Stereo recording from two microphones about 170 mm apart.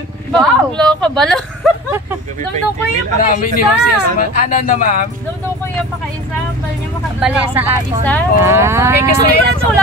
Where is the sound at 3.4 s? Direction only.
60° left (ahead or behind).